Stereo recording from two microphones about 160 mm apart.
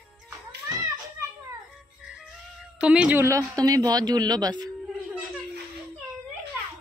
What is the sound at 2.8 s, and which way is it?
A woman's voice, 5° right (ahead or behind).